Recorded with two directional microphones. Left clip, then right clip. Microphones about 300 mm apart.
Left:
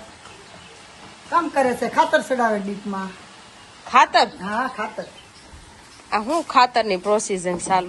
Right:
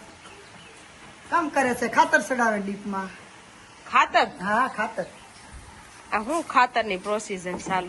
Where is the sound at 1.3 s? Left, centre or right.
Centre.